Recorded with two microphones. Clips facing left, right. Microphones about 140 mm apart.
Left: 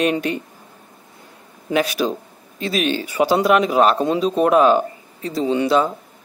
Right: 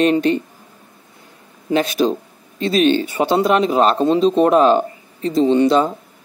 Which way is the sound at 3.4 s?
35° right (ahead or behind).